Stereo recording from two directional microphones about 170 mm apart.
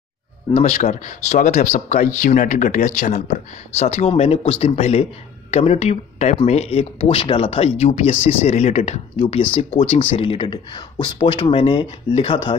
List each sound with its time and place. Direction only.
0.5 s speech: 40° left (ahead or behind)